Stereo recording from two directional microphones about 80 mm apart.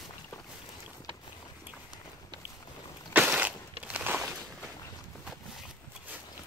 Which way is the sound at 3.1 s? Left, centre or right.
Centre.